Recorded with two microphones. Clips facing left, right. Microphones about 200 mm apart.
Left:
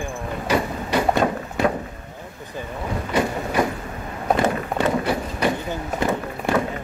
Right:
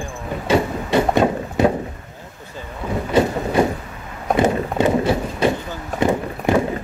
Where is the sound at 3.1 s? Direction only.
25° right (ahead or behind).